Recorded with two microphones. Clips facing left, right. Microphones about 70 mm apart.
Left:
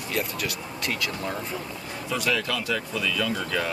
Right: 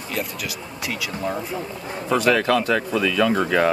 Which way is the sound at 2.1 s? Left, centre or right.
Right.